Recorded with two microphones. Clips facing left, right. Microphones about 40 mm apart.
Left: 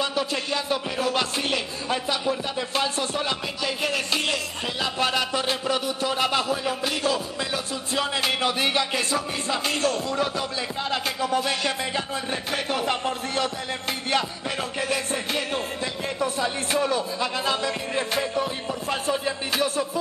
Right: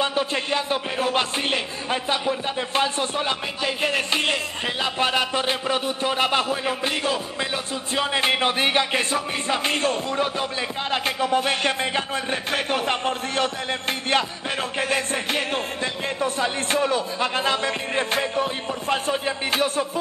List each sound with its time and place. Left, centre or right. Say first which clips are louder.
0.0 s a man's voice: right 2 dB; right